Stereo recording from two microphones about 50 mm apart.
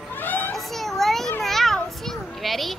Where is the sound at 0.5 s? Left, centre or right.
Centre.